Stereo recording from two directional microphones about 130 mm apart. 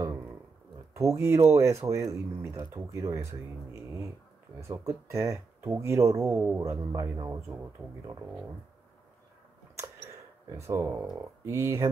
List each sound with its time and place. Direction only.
0.0 s a sound: 20° right (ahead or behind)
0.9 s speech: 20° right (ahead or behind)
4.6 s speech: 20° right (ahead or behind)
9.8 s mouse: 20° right (ahead or behind)
10.7 s speech: 20° right (ahead or behind)